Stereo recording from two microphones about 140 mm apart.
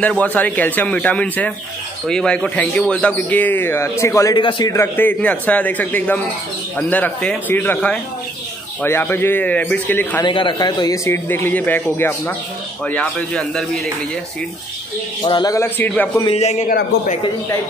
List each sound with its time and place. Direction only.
0.0 s a man's voice: 10° left (ahead or behind)
4.4 s speech: 35° left (ahead or behind)
4.7 s a man's voice: 15° left (ahead or behind)
10.2 s speech: 35° left (ahead or behind)
11.1 s a man's voice: 15° left (ahead or behind)
12.8 s speech: 5° left (ahead or behind)
15.2 s a man's voice: 30° left (ahead or behind)
16.3 s a man's voice: 50° left (ahead or behind)
16.6 s a man's voice: 75° left (ahead or behind)